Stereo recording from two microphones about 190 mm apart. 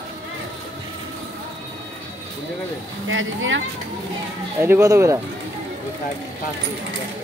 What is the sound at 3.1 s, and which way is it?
Speech, 90° right.